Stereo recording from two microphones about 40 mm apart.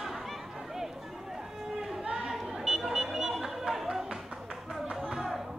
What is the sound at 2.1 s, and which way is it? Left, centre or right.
Chatter, centre.